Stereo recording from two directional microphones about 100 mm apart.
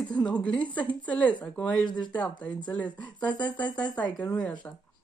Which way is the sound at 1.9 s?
50° left (ahead or behind).